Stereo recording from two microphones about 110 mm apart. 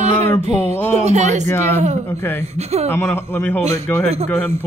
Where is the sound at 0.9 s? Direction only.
90° right.